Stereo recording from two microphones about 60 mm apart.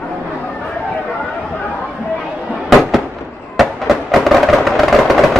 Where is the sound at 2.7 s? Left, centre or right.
Centre.